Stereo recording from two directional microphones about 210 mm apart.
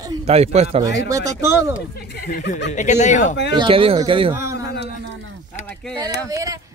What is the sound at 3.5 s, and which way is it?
Speech, 25° right (ahead or behind).